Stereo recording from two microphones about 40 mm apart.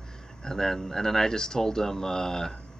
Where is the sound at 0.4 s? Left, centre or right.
Centre.